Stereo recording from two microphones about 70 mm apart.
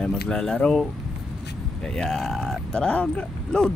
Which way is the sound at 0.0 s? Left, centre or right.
Centre.